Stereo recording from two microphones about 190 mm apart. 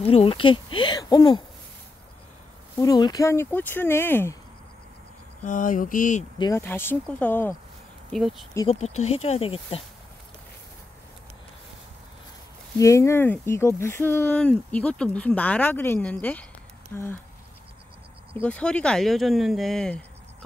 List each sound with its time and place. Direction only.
0.0 s speech: 30° left (ahead or behind)
2.8 s speech: 20° left (ahead or behind)
5.5 s mantra: 45° left (ahead or behind)
6.3 s speech: 25° left (ahead or behind)
6.6 s speech: 10° left (ahead or behind)
8.1 s speech: centre (ahead or behind)
8.6 s speech: 35° left (ahead or behind)
12.7 s speech: 15° left (ahead or behind)
18.3 s speech: 5° left (ahead or behind)